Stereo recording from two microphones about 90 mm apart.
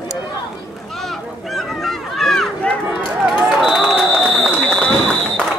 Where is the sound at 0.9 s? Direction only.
Centre (ahead or behind).